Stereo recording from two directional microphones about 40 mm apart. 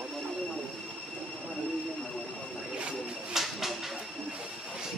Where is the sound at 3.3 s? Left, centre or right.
Centre.